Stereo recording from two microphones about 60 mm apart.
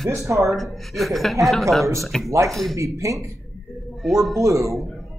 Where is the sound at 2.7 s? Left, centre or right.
Right.